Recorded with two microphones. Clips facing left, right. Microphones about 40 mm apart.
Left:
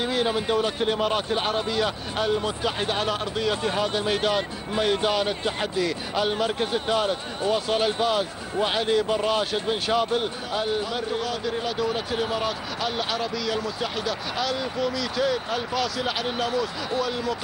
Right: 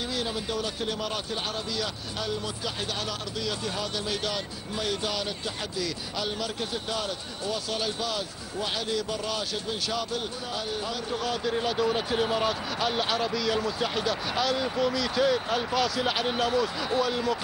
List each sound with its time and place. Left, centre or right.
0.0 s a man's voice: left
11.2 s speech: centre